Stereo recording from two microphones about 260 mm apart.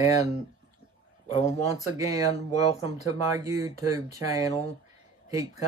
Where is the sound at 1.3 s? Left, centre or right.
Left.